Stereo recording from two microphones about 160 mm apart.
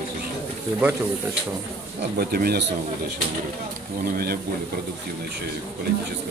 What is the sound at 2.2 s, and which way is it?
Speech, 75° right (ahead or behind).